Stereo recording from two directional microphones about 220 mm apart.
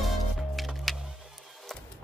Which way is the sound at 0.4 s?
Centre (ahead or behind).